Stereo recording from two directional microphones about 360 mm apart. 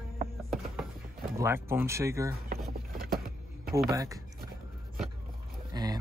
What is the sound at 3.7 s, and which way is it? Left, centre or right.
Speech, centre.